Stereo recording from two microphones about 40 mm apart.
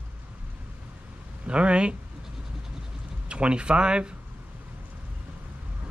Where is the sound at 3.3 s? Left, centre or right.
Right.